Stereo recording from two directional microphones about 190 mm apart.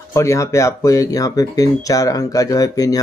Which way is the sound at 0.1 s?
15° left (ahead or behind).